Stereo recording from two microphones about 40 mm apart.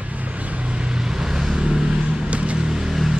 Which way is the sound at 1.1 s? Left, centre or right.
Centre.